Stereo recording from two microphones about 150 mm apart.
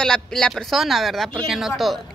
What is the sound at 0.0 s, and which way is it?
A woman's voice, 5° left (ahead or behind).